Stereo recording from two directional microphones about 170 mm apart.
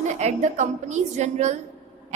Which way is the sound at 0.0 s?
40° right (ahead or behind).